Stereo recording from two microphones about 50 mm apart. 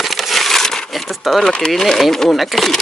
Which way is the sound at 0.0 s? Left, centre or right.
Centre.